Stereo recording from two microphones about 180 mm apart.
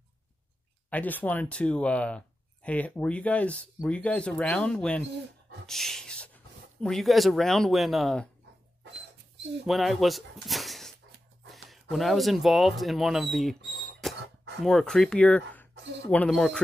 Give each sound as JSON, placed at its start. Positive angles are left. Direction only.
{"t": 0.8, "sound": "speech", "side_deg": 10}
{"t": 9.7, "sound": "speech", "side_deg": 0}
{"t": 14.0, "sound": "a sound", "side_deg": 0}
{"t": 14.6, "sound": "speech", "side_deg": 0}
{"t": 15.7, "sound": "a sound", "side_deg": -80}
{"t": 16.1, "sound": "speech", "side_deg": 5}